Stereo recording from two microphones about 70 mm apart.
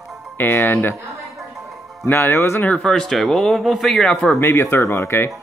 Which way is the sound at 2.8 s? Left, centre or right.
Centre.